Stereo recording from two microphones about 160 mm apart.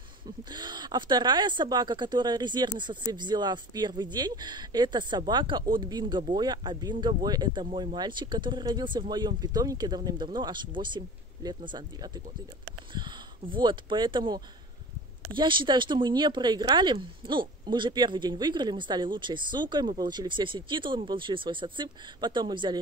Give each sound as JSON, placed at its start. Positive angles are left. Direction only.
{"t": 0.5, "sound": "speech", "side_deg": -30}